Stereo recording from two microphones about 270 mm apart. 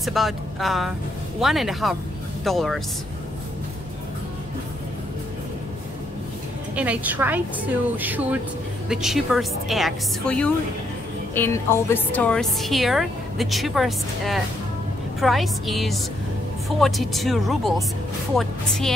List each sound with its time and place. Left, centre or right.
0.0 s a woman's voice: centre
6.7 s a woman's voice: centre